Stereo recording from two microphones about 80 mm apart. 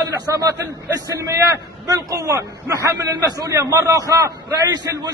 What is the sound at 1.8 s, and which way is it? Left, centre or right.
Speech, right.